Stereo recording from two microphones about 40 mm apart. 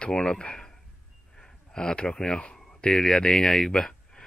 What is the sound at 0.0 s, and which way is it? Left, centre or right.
Speech, left.